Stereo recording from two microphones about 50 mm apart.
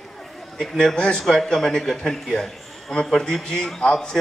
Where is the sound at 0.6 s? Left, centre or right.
Centre.